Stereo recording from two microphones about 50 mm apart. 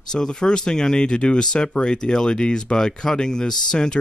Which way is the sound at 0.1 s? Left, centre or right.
Centre.